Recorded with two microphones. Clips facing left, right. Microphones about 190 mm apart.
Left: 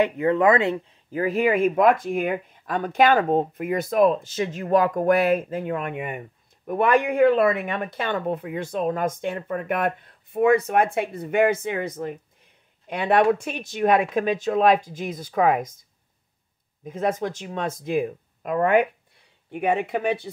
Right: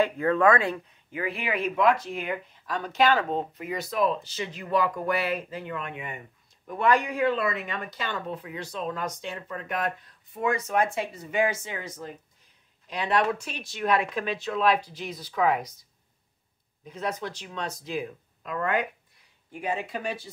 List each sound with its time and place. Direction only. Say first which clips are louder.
0.0 s speech: left 3 dB; 20° left (ahead or behind)
1.1 s speech: left 9 dB; 40° left (ahead or behind)
16.8 s speech: left 7 dB; 50° left (ahead or behind)